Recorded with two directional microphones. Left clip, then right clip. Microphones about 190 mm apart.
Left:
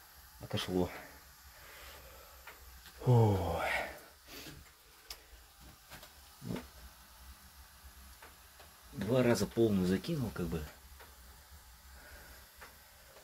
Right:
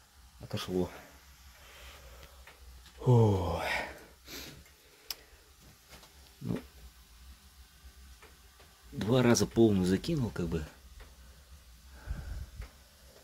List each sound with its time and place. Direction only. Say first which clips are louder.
0.5 s speech: right 1 dB; 15° right (ahead or behind)
3.0 s a sound: right 3 dB; 35° right (ahead or behind)
5.1 s tick-tock: right 7 dB; 45° right (ahead or behind)
8.9 s speech: right 3 dB; 40° right (ahead or behind)